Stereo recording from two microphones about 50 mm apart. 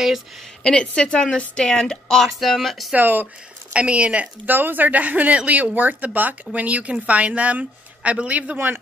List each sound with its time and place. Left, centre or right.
0.7 s speech: centre
3.0 s speech: right
3.7 s speech: right
4.5 s speech: right